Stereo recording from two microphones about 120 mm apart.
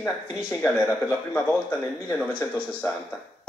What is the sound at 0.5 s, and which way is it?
Speech, 10° left (ahead or behind).